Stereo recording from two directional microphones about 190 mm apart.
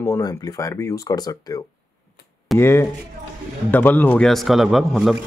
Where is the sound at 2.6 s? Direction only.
10° left (ahead or behind).